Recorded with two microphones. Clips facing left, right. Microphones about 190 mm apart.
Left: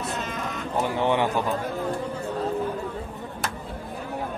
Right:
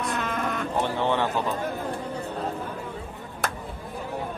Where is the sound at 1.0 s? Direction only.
15° left (ahead or behind).